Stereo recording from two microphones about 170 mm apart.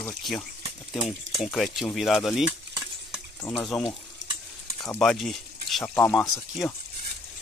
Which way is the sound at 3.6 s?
5° left (ahead or behind).